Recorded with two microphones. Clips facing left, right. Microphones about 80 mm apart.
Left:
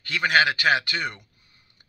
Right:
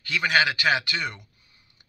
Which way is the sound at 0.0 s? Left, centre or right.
Left.